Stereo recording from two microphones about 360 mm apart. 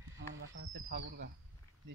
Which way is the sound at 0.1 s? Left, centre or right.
Right.